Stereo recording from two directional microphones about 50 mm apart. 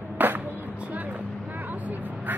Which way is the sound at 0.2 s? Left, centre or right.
Right.